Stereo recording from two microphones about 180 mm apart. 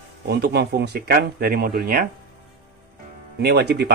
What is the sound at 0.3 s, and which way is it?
Speech, 60° right (ahead or behind).